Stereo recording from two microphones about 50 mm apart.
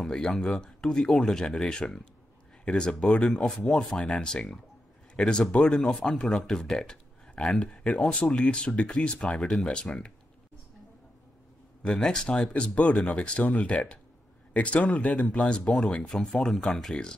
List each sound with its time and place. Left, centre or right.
0.0 s speech: centre
11.8 s speech: centre
16.0 s speech: centre